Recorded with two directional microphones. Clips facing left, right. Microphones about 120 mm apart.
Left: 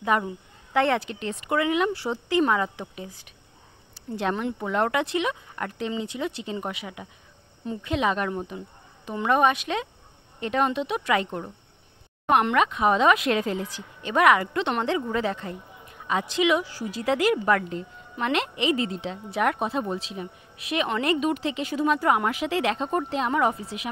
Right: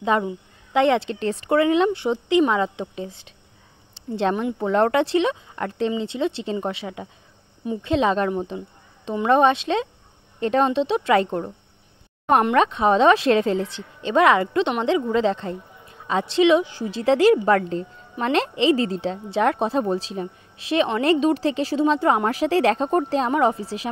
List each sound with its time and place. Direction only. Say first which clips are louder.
0.1 s a woman's voice: right 3 dB; 25° right (ahead or behind)
4.6 s a woman's voice: right 6 dB; 35° right (ahead or behind)
8.3 s a woman's voice: right 5 dB; 20° right (ahead or behind)
12.5 s a woman's voice: right 4 dB; 30° right (ahead or behind)
23.3 s a woman's voice: right 4 dB; 30° right (ahead or behind)